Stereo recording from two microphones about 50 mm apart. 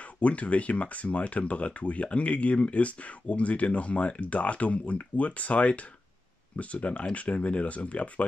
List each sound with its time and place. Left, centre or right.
0.0 s speech: left